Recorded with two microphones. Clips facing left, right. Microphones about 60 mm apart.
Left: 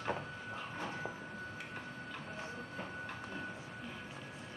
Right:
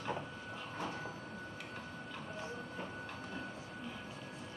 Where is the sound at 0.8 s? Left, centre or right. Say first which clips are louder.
Right 1 dB; centre.